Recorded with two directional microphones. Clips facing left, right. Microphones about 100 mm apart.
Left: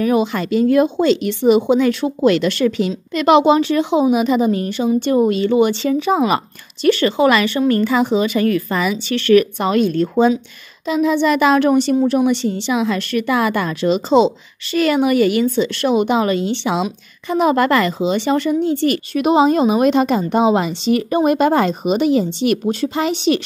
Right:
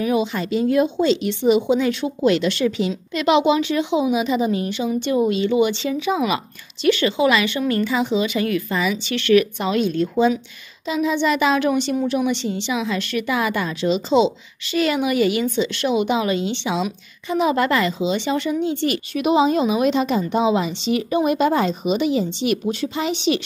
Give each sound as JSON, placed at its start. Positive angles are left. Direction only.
{"t": 0.0, "sound": "a woman's voice", "side_deg": 50}